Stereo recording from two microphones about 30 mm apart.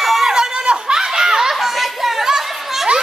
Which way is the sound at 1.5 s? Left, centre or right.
Centre.